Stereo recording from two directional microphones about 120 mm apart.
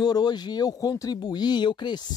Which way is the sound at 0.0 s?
35° left (ahead or behind).